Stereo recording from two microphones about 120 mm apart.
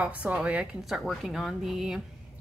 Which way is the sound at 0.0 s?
10° right (ahead or behind).